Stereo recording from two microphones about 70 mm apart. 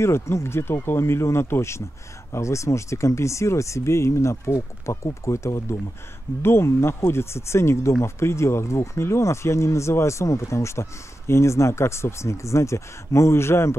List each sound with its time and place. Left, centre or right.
0.0 s speech: left